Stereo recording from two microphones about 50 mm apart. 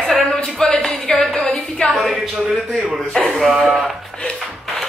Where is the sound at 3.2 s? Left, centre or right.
Centre.